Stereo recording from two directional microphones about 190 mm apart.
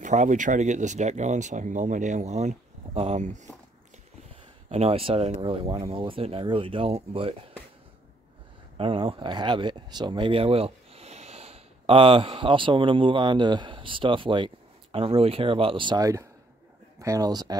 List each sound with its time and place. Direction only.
0.0 s speech: 40° right (ahead or behind)
4.6 s speech: 35° right (ahead or behind)
8.7 s speech: 30° right (ahead or behind)